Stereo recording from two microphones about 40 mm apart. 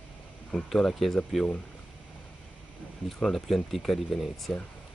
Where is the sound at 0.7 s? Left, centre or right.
Centre.